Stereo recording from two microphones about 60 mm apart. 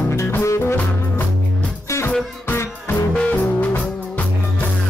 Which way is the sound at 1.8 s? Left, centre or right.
Left.